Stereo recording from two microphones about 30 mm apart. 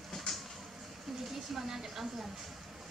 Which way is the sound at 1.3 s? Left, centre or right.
Centre.